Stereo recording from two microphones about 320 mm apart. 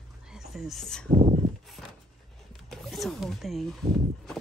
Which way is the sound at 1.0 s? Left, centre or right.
Right.